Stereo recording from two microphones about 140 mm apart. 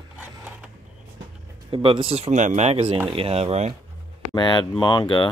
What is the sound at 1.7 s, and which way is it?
Speech, 40° right (ahead or behind).